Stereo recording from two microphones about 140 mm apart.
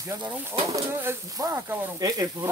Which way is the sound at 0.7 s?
20° right (ahead or behind).